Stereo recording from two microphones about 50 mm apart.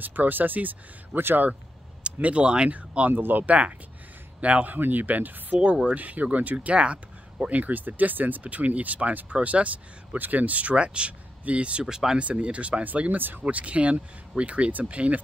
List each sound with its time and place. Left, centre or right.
0.0 s speech: right
2.1 s speech: right
3.1 s speech: right
4.7 s speech: right
11.8 s speech: centre
12.2 s speech: right